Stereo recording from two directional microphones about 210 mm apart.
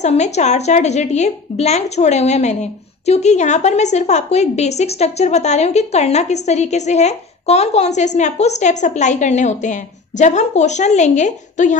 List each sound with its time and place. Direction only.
0.0 s a woman's voice: 30° left (ahead or behind)